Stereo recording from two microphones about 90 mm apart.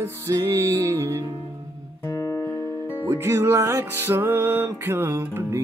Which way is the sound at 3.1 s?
30° right (ahead or behind).